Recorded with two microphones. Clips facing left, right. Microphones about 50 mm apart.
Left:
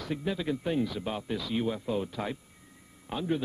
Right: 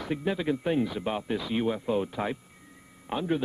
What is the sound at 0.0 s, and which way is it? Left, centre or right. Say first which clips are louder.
Speech: right 3 dB; right.